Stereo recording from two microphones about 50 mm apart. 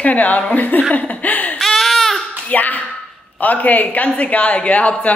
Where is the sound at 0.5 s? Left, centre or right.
Left.